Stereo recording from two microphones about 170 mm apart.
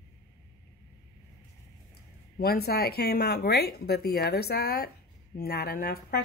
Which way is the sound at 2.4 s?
65° left (ahead or behind).